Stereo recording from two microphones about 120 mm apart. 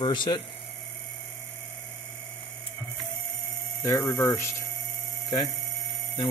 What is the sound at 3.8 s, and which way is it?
Speech, 25° left (ahead or behind).